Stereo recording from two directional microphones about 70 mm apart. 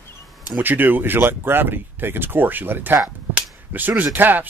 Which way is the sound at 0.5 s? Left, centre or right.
Right.